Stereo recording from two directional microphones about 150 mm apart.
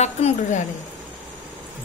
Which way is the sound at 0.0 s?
50° left (ahead or behind).